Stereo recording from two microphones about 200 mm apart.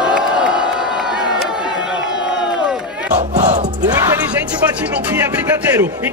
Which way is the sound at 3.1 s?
35° right (ahead or behind).